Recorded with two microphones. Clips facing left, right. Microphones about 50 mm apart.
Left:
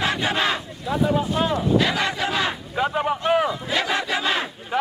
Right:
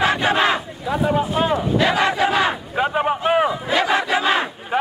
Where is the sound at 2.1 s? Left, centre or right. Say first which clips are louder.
Right 6 dB; right.